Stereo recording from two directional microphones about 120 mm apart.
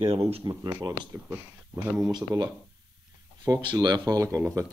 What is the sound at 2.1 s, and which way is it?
Speech, 30° right (ahead or behind).